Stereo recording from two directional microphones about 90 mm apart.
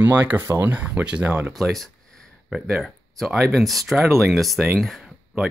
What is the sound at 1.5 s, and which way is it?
Speech, centre (ahead or behind).